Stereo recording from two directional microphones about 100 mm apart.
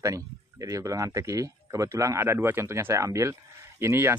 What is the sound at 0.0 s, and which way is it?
Speech, 35° right (ahead or behind).